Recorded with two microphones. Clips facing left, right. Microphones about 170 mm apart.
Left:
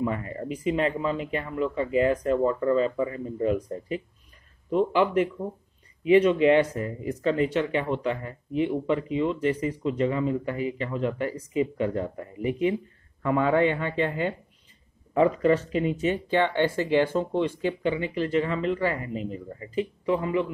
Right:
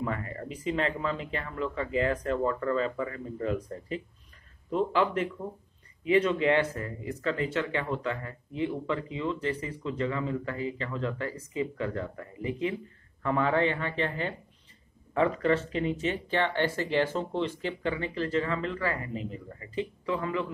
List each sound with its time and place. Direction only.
0.0 s speech: 20° left (ahead or behind)